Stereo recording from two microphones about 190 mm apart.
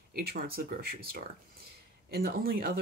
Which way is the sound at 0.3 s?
50° right (ahead or behind).